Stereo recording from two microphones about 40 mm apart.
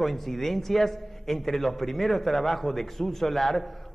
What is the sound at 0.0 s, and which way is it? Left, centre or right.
A man's voice, centre.